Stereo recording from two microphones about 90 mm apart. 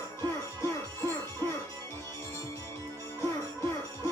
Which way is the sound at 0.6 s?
30° left (ahead or behind).